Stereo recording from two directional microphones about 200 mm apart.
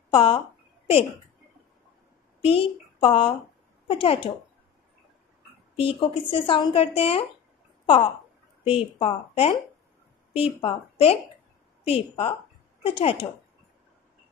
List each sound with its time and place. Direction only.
0.1 s a woman's voice: 25° left (ahead or behind)
2.4 s speech: 30° left (ahead or behind)
5.8 s speech: 25° left (ahead or behind)